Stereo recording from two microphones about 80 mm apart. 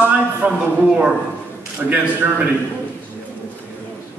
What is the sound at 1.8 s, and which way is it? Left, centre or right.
Speech, centre.